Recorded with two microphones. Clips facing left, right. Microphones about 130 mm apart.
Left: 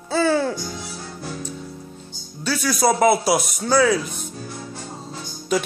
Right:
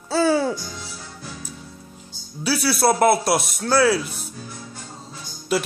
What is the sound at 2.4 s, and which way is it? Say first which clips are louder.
Speech: even; 5° right (ahead or behind).